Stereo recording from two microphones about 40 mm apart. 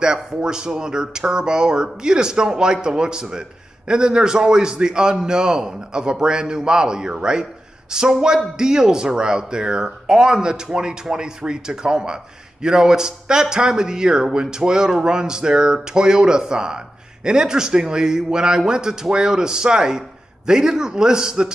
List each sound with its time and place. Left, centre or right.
0.0 s a man's voice: centre